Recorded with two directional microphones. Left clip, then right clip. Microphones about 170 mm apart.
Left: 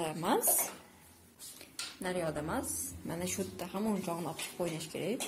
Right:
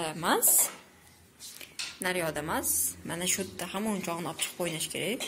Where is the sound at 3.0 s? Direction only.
Centre (ahead or behind).